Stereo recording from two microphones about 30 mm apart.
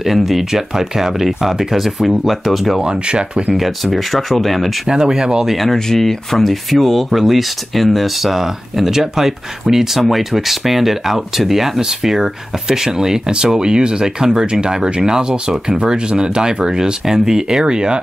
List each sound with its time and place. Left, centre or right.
0.0 s speech: centre
2.8 s speech: right
3.5 s speech: centre
4.8 s speech: right
5.9 s speech: centre
6.3 s speech: centre
14.4 s speech: right